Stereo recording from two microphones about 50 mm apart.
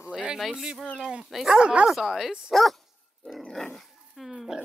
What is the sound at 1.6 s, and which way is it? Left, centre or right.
Speech, centre.